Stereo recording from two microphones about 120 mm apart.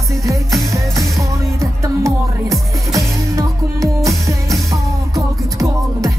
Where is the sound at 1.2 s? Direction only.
25° right (ahead or behind).